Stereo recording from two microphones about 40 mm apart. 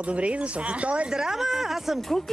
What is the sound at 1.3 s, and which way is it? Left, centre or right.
Speech, centre.